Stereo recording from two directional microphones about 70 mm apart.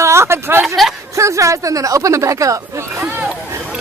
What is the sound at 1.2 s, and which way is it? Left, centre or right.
Speech, right.